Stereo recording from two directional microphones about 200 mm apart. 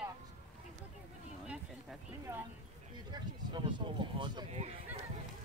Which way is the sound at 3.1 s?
20° right (ahead or behind).